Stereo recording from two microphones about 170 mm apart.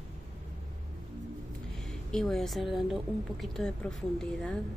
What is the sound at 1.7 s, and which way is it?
Speech, centre (ahead or behind).